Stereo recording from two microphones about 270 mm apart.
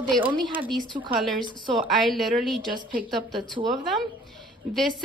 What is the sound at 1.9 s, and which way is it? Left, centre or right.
Speech, centre.